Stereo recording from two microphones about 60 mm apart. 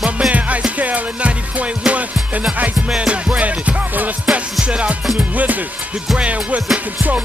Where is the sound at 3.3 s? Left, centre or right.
Right.